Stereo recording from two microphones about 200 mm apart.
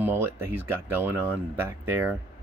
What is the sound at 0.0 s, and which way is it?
Speech, 10° right (ahead or behind).